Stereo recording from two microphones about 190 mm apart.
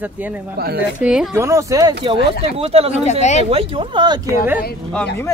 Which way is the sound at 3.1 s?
35° left (ahead or behind).